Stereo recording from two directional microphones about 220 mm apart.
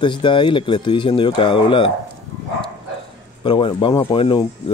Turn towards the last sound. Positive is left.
turn(degrees=25)  # may be behind; listen again after turning